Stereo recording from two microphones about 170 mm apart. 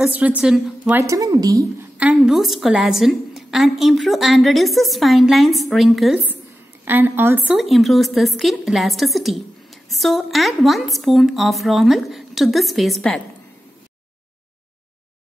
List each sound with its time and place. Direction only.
0.0 s a woman's voice: 10° right (ahead or behind)
0.9 s a woman's voice: 20° right (ahead or behind)
2.0 s a woman's voice: 5° right (ahead or behind)
6.8 s a woman's voice: 10° right (ahead or behind)